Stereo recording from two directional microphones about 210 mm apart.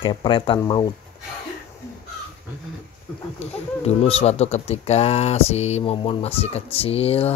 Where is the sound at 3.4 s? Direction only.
30° left (ahead or behind).